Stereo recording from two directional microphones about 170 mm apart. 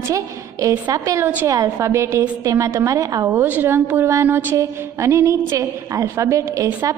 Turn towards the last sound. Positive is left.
turn(degrees=-20)  # may be behind; listen again after turning